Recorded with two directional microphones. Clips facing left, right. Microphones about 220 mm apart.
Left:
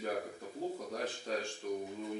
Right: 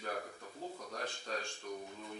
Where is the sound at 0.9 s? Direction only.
5° left (ahead or behind).